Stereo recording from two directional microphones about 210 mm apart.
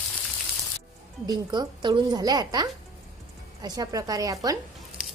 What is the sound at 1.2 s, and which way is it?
A woman's voice, 20° right (ahead or behind).